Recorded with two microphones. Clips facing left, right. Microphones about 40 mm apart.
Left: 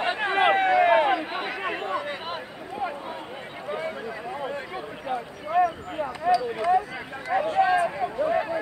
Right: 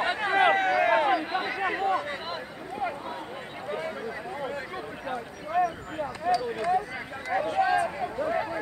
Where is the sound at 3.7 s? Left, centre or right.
Centre.